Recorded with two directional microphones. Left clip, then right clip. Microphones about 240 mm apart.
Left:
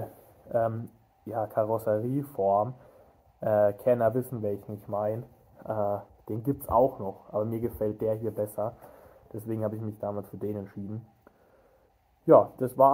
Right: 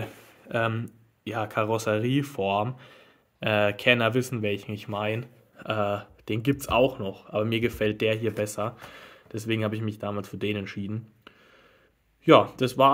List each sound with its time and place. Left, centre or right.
0.0 s speech: right